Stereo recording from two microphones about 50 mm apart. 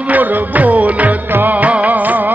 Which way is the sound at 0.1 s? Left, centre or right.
Right.